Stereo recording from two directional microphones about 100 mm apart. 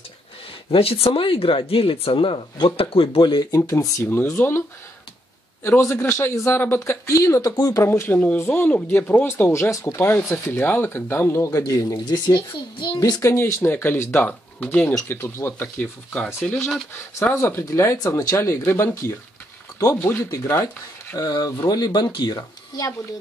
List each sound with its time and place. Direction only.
0.7 s speech: 75° left (ahead or behind)
3.2 s speech: 50° left (ahead or behind)
3.5 s a man's voice: 35° left (ahead or behind)
13.2 s a man's voice: 30° left (ahead or behind)
16.4 s speech: centre (ahead or behind)
16.9 s a man's voice: 25° left (ahead or behind)
20.2 s speech: 30° left (ahead or behind)
21.2 s speech: 40° left (ahead or behind)